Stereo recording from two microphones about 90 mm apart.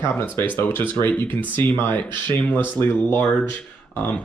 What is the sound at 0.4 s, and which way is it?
Speech, 20° left (ahead or behind).